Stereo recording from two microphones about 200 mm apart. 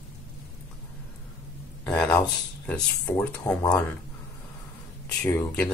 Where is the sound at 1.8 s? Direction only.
5° left (ahead or behind).